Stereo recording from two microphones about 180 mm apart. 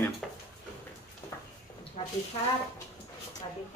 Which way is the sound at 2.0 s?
30° left (ahead or behind).